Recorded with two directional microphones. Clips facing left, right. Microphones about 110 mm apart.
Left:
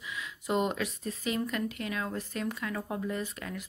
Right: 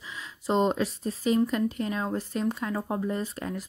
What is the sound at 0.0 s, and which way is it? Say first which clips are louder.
A woman's voice: right 4 dB; 30° right (ahead or behind).